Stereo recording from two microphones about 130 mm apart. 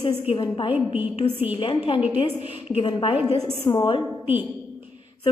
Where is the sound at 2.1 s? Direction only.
50° left (ahead or behind).